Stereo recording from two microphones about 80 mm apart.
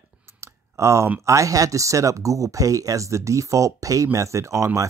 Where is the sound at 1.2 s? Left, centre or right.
Right.